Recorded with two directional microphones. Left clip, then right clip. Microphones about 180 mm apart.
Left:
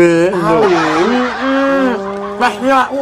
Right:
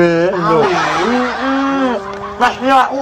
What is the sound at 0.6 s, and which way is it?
Music, centre (ahead or behind).